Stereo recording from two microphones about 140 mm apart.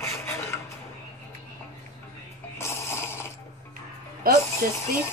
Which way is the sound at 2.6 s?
20° left (ahead or behind).